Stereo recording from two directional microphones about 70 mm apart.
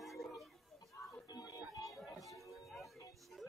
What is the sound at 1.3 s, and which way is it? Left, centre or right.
Music, left.